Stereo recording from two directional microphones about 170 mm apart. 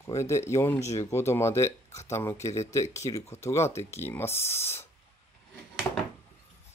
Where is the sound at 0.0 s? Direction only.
15° left (ahead or behind).